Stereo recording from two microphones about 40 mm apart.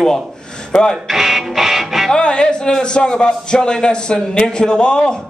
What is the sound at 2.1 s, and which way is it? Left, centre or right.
A man's voice, left.